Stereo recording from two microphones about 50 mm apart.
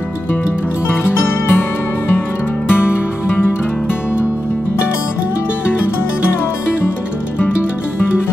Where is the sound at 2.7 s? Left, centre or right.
Left.